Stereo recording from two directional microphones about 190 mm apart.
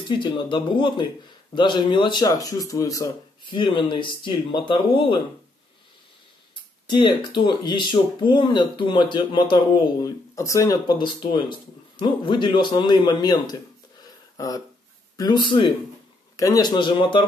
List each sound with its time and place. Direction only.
0.1 s speech: 25° left (ahead or behind)
6.9 s speech: 25° left (ahead or behind)
14.3 s a sound: 20° left (ahead or behind)
15.1 s speech: 20° left (ahead or behind)